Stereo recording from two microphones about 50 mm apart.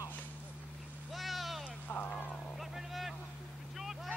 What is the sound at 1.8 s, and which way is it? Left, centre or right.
Vehicle, left.